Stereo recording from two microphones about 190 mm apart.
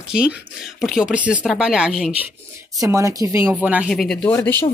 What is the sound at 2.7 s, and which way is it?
Speech, 15° right (ahead or behind).